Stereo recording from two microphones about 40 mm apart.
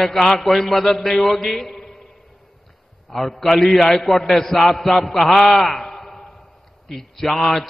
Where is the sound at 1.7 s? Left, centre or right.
Left.